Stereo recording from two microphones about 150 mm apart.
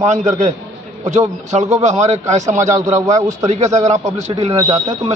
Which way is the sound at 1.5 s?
50° right (ahead or behind).